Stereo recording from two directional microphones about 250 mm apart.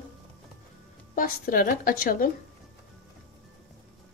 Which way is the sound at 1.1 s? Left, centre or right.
Left.